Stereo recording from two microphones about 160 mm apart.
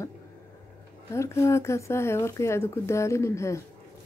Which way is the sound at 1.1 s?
20° left (ahead or behind).